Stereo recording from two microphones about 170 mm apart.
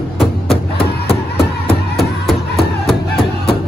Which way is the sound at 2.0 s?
Centre (ahead or behind).